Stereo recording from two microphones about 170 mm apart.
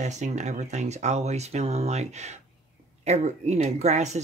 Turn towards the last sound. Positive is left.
turn(degrees=-40)  # may be behind; listen again after turning